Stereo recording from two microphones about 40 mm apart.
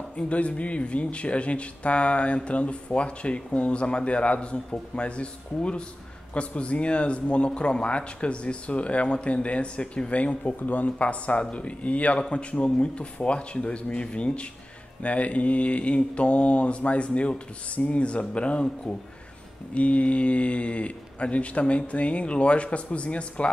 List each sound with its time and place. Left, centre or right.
0.1 s speech: left